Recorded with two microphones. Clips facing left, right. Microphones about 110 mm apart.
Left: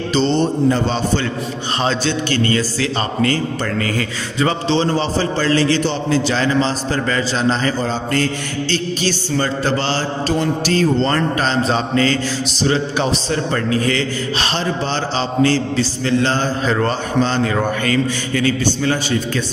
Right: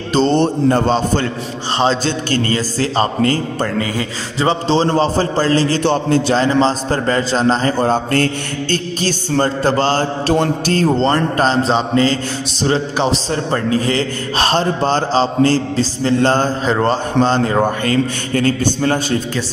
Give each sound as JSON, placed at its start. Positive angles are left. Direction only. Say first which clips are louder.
{"t": 0.1, "sound": "mantra", "louder": "right 3 dB", "side_deg": -50}
{"t": 0.8, "sound": "a man's voice", "louder": "right 3 dB", "side_deg": -40}
{"t": 1.8, "sound": "a man's voice", "louder": "right 3 dB", "side_deg": -25}
{"t": 5.9, "sound": "mantra", "louder": "right 3 dB", "side_deg": -50}
{"t": 6.3, "sound": "a man's voice", "louder": "right 3 dB", "side_deg": -35}
{"t": 7.8, "sound": "mantra", "louder": "right 4 dB", "side_deg": -55}
{"t": 10.2, "sound": "mantra", "louder": "right 1 dB", "side_deg": -55}
{"t": 11.0, "sound": "a man's voice", "louder": "right 3 dB", "side_deg": -25}
{"t": 12.6, "sound": "a man's voice", "louder": "right 2 dB", "side_deg": -35}
{"t": 14.4, "sound": "mantra", "louder": "right 8 dB", "side_deg": -40}
{"t": 16.6, "sound": "a man's voice", "louder": "right 2 dB", "side_deg": -25}